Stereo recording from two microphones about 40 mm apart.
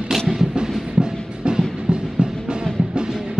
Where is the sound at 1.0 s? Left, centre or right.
Right.